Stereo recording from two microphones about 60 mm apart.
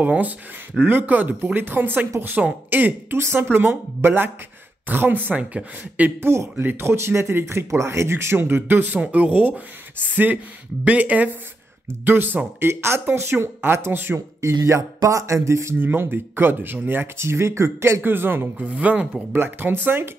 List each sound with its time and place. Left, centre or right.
0.0 s speech: right
5.4 s speech: right
6.2 s speech: right
6.5 s speech: right
8.8 s speech: right
14.6 s music: right
15.8 s speech: right
18.0 s speech: right
19.3 s speech: right